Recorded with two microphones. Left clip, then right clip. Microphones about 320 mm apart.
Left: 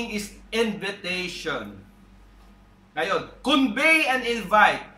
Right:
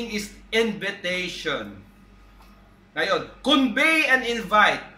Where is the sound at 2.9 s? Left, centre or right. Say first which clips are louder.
Right 2 dB; centre.